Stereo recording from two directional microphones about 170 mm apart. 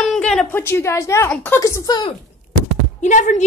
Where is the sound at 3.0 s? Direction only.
45° left (ahead or behind).